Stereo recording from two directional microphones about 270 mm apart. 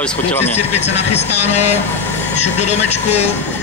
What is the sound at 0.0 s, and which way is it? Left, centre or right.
Speech, centre.